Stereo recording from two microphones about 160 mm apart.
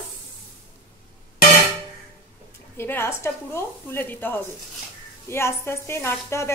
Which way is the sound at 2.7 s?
15° left (ahead or behind).